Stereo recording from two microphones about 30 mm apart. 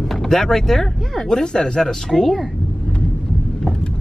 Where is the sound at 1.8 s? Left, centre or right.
Centre.